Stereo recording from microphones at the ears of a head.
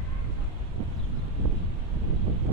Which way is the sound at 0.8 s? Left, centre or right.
Right.